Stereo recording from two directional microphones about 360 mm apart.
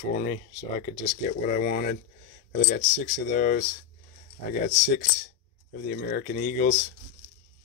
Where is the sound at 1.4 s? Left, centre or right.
Left.